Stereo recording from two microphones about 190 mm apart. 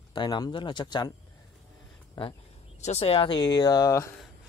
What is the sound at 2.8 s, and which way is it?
Speech, 35° left (ahead or behind).